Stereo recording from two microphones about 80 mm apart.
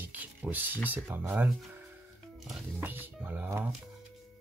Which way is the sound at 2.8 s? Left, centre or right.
Right.